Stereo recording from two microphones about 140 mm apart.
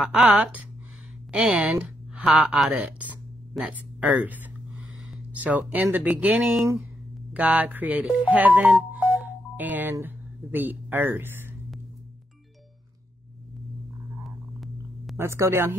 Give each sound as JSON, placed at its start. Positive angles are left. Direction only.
{"t": 0.0, "sound": "speech", "side_deg": -5}
{"t": 1.3, "sound": "a sound", "side_deg": -5}
{"t": 2.2, "sound": "speech", "side_deg": -5}
{"t": 9.0, "sound": "telephone dialing", "side_deg": -10}
{"t": 15.1, "sound": "speech", "side_deg": -20}